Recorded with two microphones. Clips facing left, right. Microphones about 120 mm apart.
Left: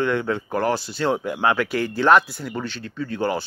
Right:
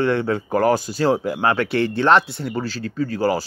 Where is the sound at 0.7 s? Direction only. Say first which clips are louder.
Right 4 dB; 45° right (ahead or behind).